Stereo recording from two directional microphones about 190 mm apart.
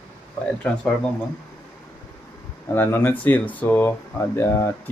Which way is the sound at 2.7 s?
10° left (ahead or behind).